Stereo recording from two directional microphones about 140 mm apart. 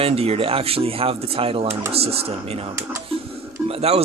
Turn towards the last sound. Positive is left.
turn(degrees=-45)  # may be behind; listen again after turning